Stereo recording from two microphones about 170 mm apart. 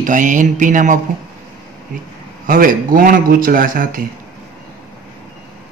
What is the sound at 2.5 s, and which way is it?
Speech, 55° right (ahead or behind).